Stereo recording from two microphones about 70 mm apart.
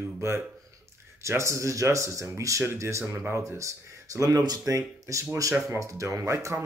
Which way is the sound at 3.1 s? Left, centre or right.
Right.